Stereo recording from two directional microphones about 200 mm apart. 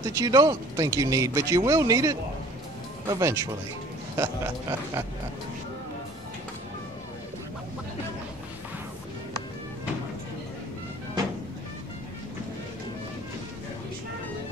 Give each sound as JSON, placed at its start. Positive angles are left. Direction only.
{"t": 0.0, "sound": "speech", "side_deg": -15}